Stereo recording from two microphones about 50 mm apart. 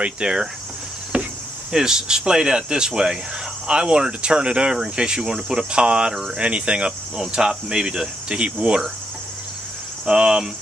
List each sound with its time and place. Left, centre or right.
0.0 s speech: centre
1.1 s insect: right
1.7 s speech: centre
10.0 s speech: centre